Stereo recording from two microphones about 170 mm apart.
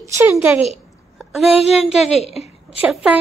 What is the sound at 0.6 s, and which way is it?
A woman's voice, centre (ahead or behind).